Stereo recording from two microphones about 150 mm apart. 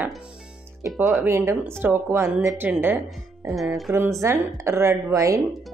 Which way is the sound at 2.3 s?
Centre (ahead or behind).